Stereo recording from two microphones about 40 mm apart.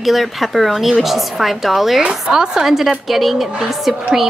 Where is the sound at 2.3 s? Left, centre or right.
Centre.